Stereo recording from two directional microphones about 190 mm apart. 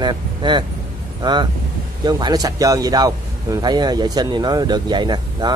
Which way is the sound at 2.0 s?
20° right (ahead or behind).